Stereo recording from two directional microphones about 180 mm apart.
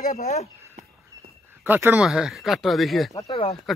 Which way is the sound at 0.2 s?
35° left (ahead or behind).